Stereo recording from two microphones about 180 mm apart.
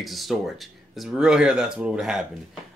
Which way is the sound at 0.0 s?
Centre (ahead or behind).